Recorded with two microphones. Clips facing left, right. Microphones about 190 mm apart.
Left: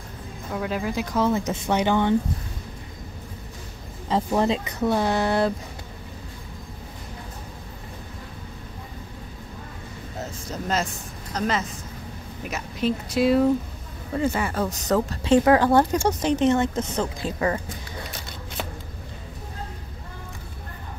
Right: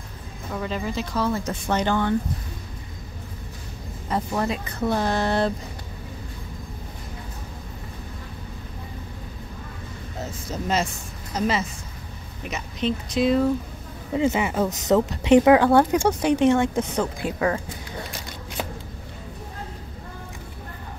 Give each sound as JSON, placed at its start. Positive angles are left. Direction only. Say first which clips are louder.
{"t": 0.5, "sound": "speech", "louder": "left 1 dB", "side_deg": 5}
{"t": 1.1, "sound": "speech", "louder": "left 3 dB", "side_deg": 20}
{"t": 4.3, "sound": "speech", "louder": "left 4 dB", "side_deg": 25}
{"t": 10.5, "sound": "speech", "louder": "right 2 dB", "side_deg": 0}
{"t": 12.4, "sound": "speech", "louder": "left 1 dB", "side_deg": 5}
{"t": 14.1, "sound": "speech", "louder": "right 2 dB", "side_deg": -20}